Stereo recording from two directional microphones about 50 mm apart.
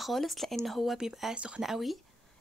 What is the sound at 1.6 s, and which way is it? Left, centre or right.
Speech, centre.